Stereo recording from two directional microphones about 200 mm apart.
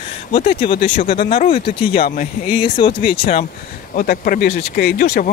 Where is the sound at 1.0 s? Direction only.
50° left (ahead or behind).